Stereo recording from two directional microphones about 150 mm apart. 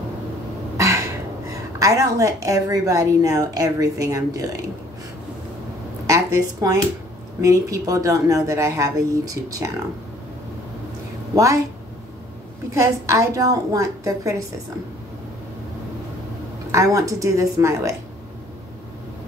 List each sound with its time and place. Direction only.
0.7 s cough: 20° right (ahead or behind)
1.5 s a woman's voice: 20° right (ahead or behind)
6.0 s a sound: 20° right (ahead or behind)
7.4 s a woman's voice: 20° right (ahead or behind)
12.7 s a woman's voice: 20° right (ahead or behind)
16.7 s a woman's voice: 20° right (ahead or behind)